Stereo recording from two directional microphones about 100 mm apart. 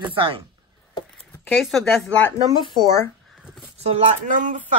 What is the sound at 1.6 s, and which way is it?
Speech, centre (ahead or behind).